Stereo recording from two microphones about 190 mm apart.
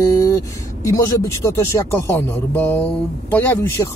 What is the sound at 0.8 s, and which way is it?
Speech, 15° left (ahead or behind).